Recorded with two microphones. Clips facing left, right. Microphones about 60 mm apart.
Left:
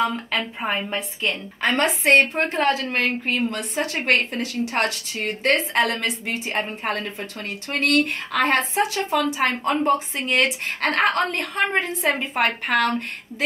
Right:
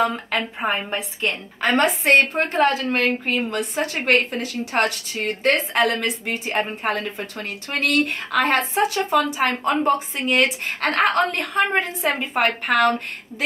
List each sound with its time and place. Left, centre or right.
0.0 s a woman's voice: right
0.6 s a woman's voice: right
2.0 s a woman's voice: centre